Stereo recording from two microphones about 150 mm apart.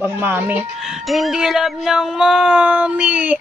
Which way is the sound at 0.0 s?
15° right (ahead or behind).